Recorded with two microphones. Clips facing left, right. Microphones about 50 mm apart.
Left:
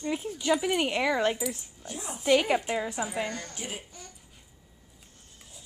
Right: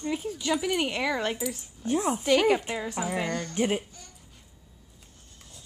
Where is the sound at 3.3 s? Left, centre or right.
Right.